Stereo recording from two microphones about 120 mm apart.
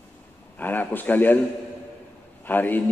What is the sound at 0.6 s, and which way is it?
Speech, 15° left (ahead or behind).